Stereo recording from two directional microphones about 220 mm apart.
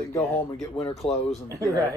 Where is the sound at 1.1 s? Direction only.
25° left (ahead or behind).